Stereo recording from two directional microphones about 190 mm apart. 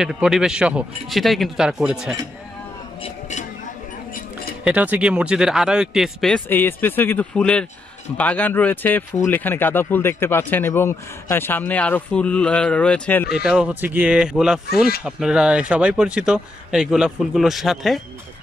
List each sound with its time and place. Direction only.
0.0 s speech: centre (ahead or behind)
3.0 s a sound: 40° left (ahead or behind)
4.6 s speech: 10° right (ahead or behind)